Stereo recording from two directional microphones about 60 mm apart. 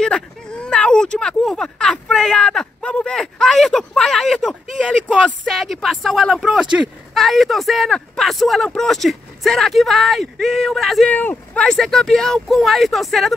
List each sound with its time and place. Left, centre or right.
0.0 s a sound: centre
3.9 s speech: centre
5.6 s speech: centre
6.3 s speech: centre
11.1 s speech: left
11.6 s speech: centre